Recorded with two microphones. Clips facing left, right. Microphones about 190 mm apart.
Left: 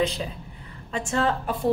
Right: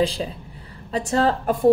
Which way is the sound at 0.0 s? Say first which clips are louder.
Right 3 dB; 30° right (ahead or behind).